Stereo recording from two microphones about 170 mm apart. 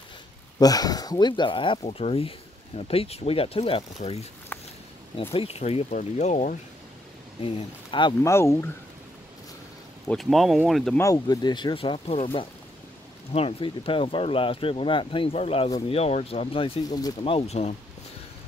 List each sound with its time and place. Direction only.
0.6 s speech: 20° left (ahead or behind)
5.3 s speech: 35° left (ahead or behind)
7.4 s speech: 30° left (ahead or behind)
8.2 s speech: 15° left (ahead or behind)
10.0 s speech: centre (ahead or behind)
11.0 s speech: 20° left (ahead or behind); by 17.7 s 40° left (ahead or behind)